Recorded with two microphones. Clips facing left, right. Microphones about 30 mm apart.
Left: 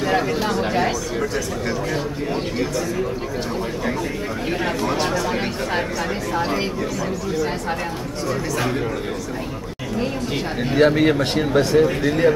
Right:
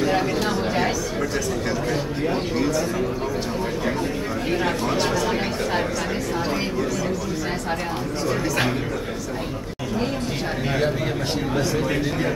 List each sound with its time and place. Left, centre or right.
0.0 s chatter: centre
4.5 s chatter: centre
10.8 s speech: left